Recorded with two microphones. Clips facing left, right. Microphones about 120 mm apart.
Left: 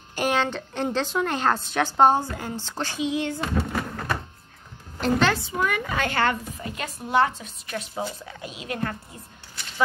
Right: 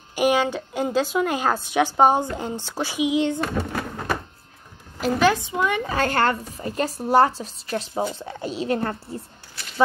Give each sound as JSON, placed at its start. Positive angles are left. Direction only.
{"t": 0.1, "sound": "a woman's voice", "side_deg": -10}
{"t": 5.0, "sound": "a woman's voice", "side_deg": -15}